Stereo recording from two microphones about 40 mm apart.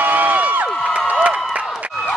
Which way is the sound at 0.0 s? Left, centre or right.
Right.